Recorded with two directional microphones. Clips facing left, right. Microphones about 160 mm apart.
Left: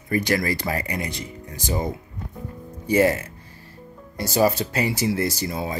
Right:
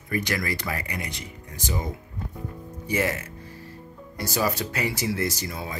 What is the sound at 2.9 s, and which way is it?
Speech, 30° left (ahead or behind).